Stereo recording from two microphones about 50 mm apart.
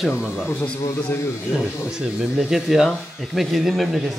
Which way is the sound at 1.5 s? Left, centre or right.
Centre.